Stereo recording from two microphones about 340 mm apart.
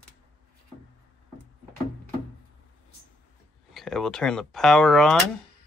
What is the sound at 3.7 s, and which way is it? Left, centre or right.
Speech, centre.